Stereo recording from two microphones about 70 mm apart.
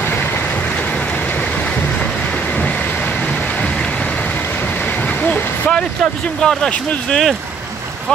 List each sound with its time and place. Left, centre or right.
5.0 s vehicle: centre
6.4 s speech: centre